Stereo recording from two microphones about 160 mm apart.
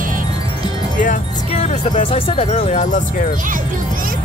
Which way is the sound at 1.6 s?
40° left (ahead or behind).